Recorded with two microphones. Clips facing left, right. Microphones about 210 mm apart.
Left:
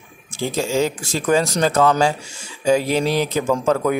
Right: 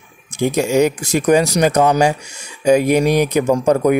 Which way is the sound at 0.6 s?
15° right (ahead or behind).